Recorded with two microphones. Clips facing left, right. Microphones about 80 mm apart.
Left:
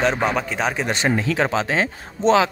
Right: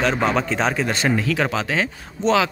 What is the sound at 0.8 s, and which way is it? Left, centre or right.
Speech, left.